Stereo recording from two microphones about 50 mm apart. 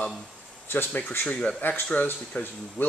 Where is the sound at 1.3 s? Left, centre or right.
Left.